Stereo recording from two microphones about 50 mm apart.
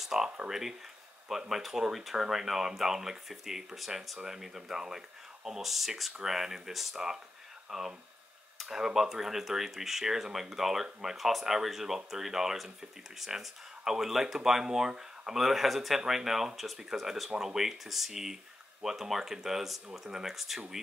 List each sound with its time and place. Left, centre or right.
0.0 s speech: centre